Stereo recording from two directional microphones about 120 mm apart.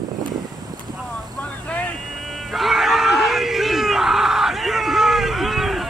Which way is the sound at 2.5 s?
Centre (ahead or behind).